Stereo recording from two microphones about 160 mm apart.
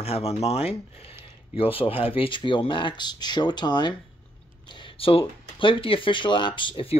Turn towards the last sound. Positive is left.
turn(degrees=30)  # may be behind; listen again after turning